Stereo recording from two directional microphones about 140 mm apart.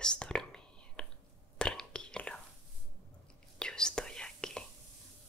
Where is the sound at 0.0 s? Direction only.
5° left (ahead or behind).